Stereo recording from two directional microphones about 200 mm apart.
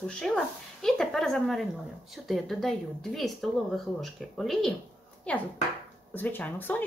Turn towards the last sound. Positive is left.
turn(degrees=10)  # may be behind; listen again after turning